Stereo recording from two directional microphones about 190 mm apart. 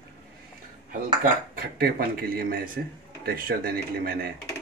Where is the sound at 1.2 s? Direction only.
55° right (ahead or behind).